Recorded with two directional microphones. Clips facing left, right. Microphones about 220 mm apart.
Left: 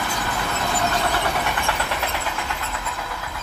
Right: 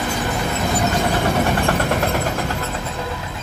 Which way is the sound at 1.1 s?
40° right (ahead or behind).